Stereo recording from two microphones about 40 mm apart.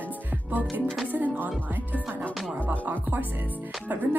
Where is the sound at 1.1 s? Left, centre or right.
Right.